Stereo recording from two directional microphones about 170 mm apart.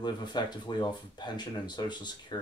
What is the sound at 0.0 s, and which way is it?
Speech, 25° left (ahead or behind).